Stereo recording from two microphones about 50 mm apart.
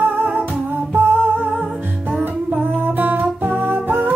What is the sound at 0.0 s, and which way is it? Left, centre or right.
Music, right.